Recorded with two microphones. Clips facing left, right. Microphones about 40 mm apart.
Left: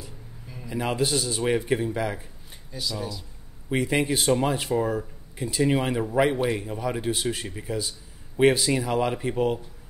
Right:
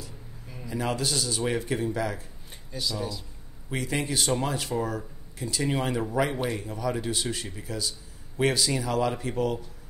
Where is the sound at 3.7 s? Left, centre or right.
Left.